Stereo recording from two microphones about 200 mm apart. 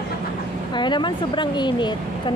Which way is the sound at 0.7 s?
25° left (ahead or behind).